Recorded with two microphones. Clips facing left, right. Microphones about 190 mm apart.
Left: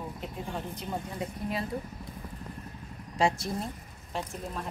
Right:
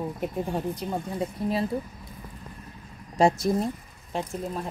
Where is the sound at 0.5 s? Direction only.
35° right (ahead or behind).